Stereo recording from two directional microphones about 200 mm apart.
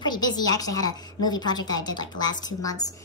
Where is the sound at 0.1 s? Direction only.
20° left (ahead or behind).